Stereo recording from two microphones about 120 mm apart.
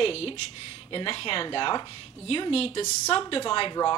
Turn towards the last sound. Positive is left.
turn(degrees=45)  # may be behind; listen again after turning